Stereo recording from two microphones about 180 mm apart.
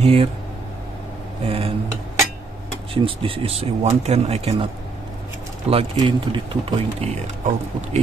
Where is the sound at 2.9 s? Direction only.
30° right (ahead or behind).